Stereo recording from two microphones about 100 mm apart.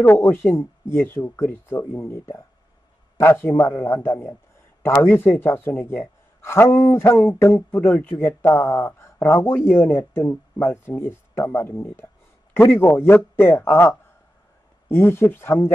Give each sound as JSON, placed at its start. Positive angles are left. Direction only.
{"t": 0.0, "sound": "speech", "side_deg": 20}